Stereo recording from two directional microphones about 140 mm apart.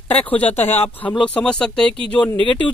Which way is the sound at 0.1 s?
10° left (ahead or behind).